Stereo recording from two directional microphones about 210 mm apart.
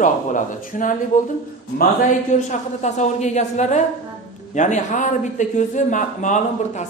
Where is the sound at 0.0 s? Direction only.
40° left (ahead or behind).